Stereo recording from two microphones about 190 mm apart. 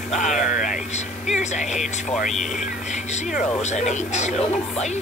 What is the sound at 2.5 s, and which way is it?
Speech, 40° left (ahead or behind).